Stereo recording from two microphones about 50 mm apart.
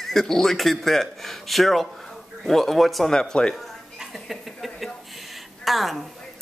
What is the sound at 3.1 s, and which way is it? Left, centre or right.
Speech, centre.